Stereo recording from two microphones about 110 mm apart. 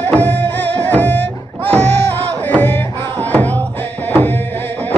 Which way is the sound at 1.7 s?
85° right.